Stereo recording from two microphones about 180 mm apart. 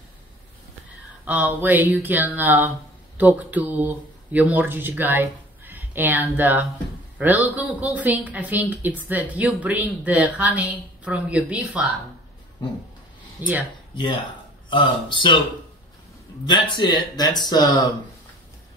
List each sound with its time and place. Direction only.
1.2 s a woman's voice: 10° right (ahead or behind)
13.4 s a woman's voice: 10° right (ahead or behind)
13.9 s speech: 25° left (ahead or behind)
16.4 s speech: 25° left (ahead or behind)